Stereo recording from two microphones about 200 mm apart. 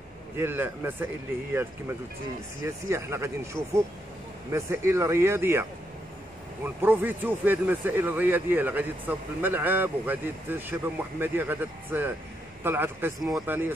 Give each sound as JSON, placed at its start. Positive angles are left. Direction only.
{"t": 0.4, "sound": "speech", "side_deg": -10}
{"t": 4.5, "sound": "speech", "side_deg": -15}